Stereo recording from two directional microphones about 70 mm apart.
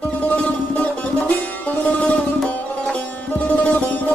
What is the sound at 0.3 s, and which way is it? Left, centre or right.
Music, centre.